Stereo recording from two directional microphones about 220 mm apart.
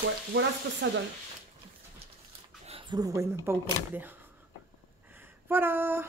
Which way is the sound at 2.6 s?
25° right (ahead or behind).